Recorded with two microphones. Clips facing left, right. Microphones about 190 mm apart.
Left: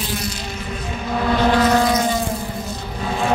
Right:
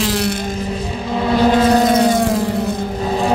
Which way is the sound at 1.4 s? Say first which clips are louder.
Right 4 dB; 20° right (ahead or behind).